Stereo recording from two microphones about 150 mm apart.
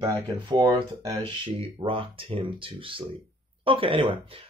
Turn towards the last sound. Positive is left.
turn(degrees=-35)  # may be behind; listen again after turning